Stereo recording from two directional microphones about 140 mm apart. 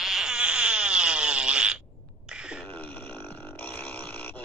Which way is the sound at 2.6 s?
15° left (ahead or behind).